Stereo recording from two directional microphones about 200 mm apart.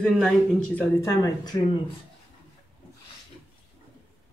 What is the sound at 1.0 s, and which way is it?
Speech, 20° left (ahead or behind).